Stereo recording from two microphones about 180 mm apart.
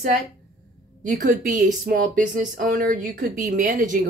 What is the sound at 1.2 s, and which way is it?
A woman's voice, 45° right (ahead or behind).